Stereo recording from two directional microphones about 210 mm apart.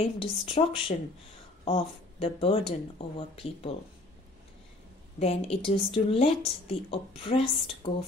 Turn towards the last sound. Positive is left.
turn(degrees=25)  # may be behind; listen again after turning